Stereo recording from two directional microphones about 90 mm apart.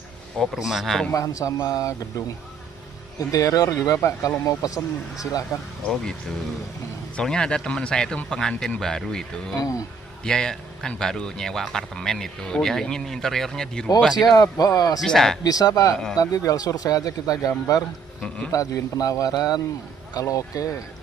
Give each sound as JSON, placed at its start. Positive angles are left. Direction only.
{"t": 0.4, "sound": "speech", "side_deg": 0}
{"t": 1.1, "sound": "speech", "side_deg": 40}
{"t": 7.2, "sound": "speech", "side_deg": 10}
{"t": 9.6, "sound": "speech", "side_deg": 40}
{"t": 10.2, "sound": "speech", "side_deg": 10}
{"t": 14.2, "sound": "a man's voice", "side_deg": 45}
{"t": 15.0, "sound": "speech", "side_deg": 5}
{"t": 15.4, "sound": "a man's voice", "side_deg": 45}